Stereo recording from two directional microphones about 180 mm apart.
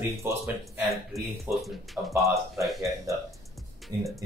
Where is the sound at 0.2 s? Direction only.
10° right (ahead or behind).